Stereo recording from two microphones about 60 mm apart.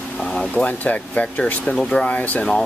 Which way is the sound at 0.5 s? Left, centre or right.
Left.